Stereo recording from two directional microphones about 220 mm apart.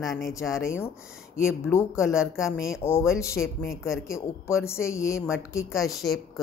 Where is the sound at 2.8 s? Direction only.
10° left (ahead or behind).